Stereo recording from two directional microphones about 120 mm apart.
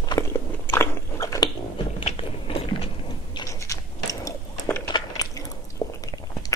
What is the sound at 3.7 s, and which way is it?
Biting, 25° left (ahead or behind).